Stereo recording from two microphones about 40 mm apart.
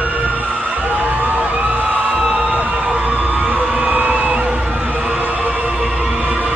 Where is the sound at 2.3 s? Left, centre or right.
Right.